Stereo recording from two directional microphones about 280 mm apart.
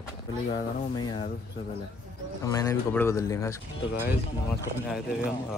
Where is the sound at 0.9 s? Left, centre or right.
Centre.